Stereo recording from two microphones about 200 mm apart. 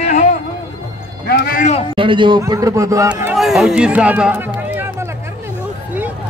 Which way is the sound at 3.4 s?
Centre (ahead or behind).